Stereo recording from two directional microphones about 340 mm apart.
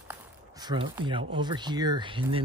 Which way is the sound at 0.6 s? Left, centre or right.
Centre.